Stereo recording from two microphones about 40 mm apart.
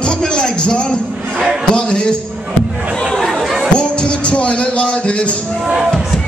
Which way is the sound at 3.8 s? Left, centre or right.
Left.